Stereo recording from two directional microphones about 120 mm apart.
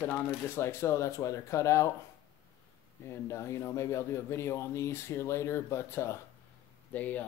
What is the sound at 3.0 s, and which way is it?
Speech, 25° left (ahead or behind).